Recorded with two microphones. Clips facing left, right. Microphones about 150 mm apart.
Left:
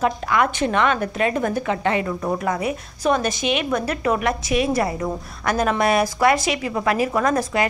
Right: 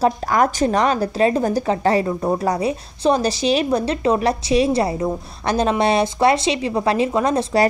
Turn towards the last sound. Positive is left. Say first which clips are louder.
# right 3 dB
turn(degrees=-30)  # may be behind; listen again after turning